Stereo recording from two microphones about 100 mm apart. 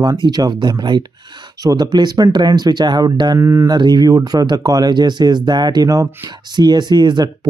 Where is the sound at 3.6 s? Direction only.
45° right (ahead or behind).